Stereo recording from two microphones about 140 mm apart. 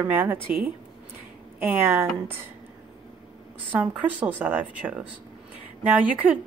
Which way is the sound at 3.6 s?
10° right (ahead or behind).